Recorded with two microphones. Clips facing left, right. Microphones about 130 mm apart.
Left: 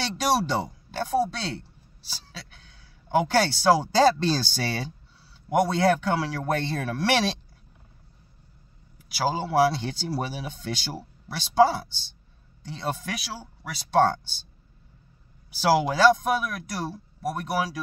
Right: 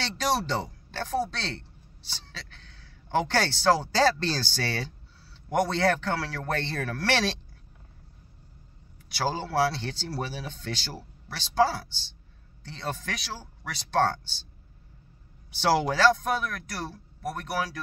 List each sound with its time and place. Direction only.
0.0 s speech: 15° left (ahead or behind)
9.1 s speech: 10° left (ahead or behind)
15.5 s speech: 5° left (ahead or behind)